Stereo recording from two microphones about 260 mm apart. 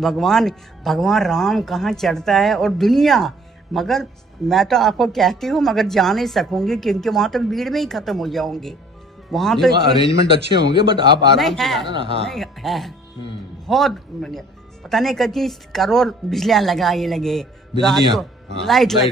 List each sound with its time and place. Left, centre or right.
0.0 s speech: centre
10.7 s a man's voice: centre
11.3 s speech: centre
11.9 s speech: right
12.3 s speech: centre